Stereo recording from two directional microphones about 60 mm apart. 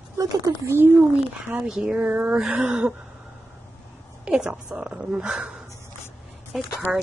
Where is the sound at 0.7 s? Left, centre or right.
Right.